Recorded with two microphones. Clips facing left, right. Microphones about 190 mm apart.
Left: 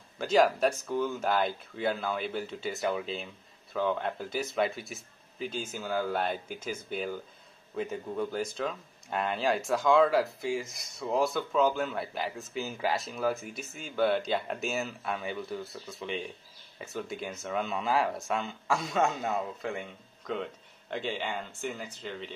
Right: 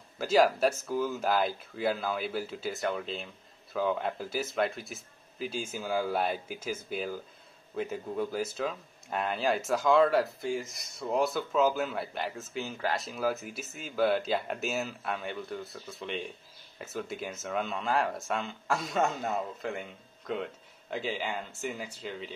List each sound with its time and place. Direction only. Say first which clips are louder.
0.2 s speech: even; 5° right (ahead or behind)